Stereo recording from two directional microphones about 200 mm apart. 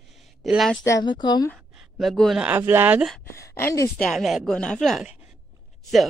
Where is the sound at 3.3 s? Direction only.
15° left (ahead or behind).